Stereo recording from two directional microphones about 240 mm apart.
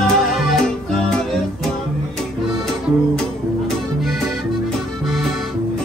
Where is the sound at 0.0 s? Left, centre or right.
Centre.